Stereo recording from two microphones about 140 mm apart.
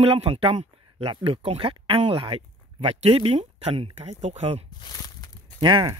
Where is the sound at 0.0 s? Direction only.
45° right (ahead or behind).